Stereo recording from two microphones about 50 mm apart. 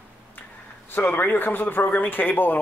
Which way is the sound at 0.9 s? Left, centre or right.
Left.